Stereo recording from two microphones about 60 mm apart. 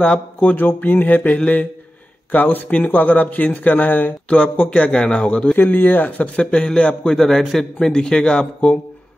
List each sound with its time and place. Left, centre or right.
0.0 s mantra: left
2.3 s speech: left
4.3 s a man's voice: centre
5.6 s a man's voice: left